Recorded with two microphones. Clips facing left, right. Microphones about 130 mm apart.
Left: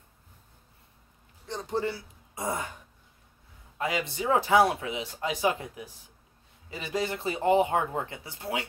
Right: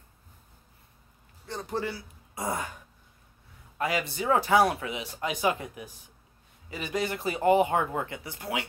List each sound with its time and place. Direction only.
1.5 s a man's voice: 20° left (ahead or behind)
3.7 s speech: 20° left (ahead or behind)